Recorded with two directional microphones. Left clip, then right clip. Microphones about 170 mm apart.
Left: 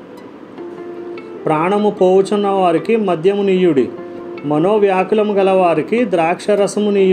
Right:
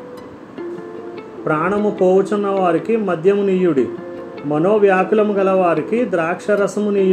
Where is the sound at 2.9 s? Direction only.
15° left (ahead or behind).